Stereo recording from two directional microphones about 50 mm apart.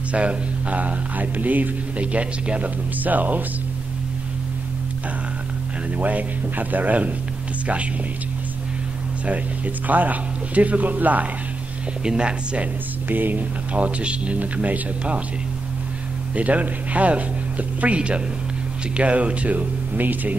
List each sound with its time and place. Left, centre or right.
0.1 s speech: right
5.9 s speech: right
9.8 s speech: right
12.0 s speech: centre
13.1 s speech: right
16.3 s speech: right